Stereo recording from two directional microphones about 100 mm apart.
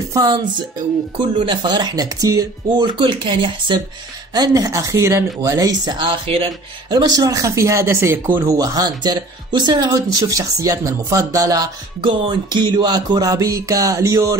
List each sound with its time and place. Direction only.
1.1 s speech: 50° right (ahead or behind)
4.3 s speech: 40° right (ahead or behind)
5.9 s speech: 65° right (ahead or behind)
6.9 s speech: 40° right (ahead or behind)
8.5 s speech: 40° right (ahead or behind)
12.0 s speech: 60° right (ahead or behind); by 14.3 s 30° right (ahead or behind)